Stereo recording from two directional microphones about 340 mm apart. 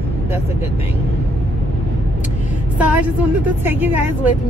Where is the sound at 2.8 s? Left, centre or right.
Centre.